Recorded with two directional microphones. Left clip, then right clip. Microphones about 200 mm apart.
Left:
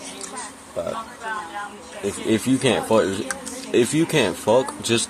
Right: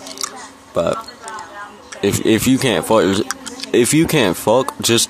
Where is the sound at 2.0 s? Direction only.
50° right (ahead or behind).